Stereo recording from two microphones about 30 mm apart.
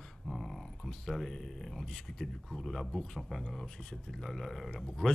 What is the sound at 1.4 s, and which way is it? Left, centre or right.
Speech, centre.